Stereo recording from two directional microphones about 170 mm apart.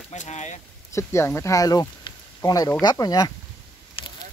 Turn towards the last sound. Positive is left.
turn(degrees=30)  # may be behind; listen again after turning